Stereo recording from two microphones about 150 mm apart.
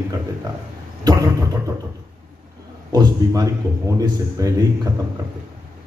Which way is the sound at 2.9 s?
25° right (ahead or behind).